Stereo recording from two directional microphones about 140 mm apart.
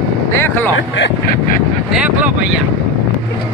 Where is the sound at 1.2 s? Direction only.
90° left.